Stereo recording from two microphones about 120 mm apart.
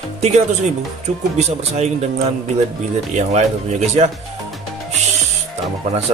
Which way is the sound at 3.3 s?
65° right (ahead or behind).